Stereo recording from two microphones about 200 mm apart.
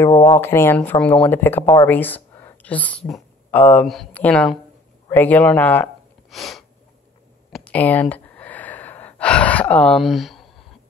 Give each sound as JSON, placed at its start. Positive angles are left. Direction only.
{"t": 0.0, "sound": "speech", "side_deg": 15}
{"t": 6.3, "sound": "sneeze", "side_deg": 0}
{"t": 7.5, "sound": "gasp", "side_deg": 5}